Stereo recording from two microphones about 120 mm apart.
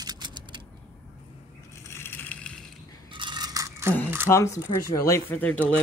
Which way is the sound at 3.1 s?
40° right (ahead or behind).